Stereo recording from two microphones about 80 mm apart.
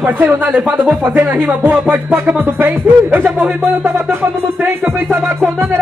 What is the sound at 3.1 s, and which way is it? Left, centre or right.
Speech, right.